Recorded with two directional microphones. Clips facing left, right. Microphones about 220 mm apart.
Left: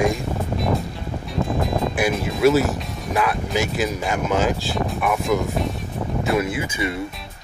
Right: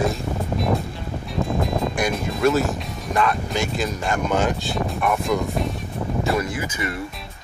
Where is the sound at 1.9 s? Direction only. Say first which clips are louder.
Left 2 dB; 5° left (ahead or behind).